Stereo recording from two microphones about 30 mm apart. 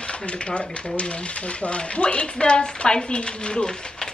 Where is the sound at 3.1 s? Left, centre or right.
Left.